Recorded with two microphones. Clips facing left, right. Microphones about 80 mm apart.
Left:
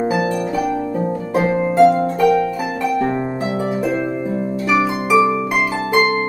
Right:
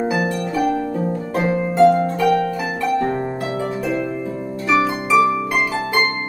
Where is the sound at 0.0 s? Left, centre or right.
Centre.